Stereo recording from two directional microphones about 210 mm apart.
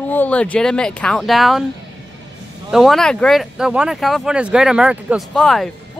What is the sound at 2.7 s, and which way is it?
Speech, centre (ahead or behind).